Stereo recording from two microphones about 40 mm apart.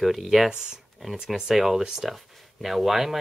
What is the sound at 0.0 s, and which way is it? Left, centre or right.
Speech, centre.